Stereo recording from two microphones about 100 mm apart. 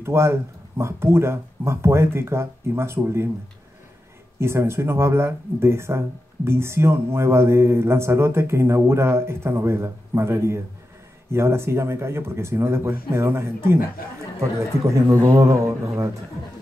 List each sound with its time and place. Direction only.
0.0 s speech: 25° right (ahead or behind)
4.4 s a man's voice: 25° right (ahead or behind)